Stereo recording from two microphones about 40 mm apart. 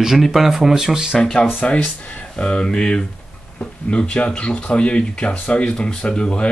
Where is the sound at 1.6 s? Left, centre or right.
Left.